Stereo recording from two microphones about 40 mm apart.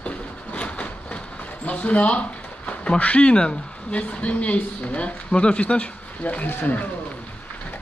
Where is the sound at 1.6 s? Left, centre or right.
Left.